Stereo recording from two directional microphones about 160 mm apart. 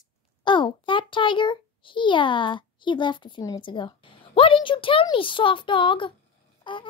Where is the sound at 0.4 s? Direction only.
30° left (ahead or behind).